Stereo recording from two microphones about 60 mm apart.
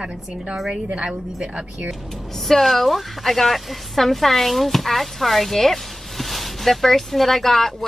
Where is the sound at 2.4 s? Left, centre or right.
Centre.